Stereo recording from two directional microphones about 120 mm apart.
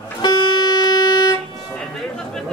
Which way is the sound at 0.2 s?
35° left (ahead or behind).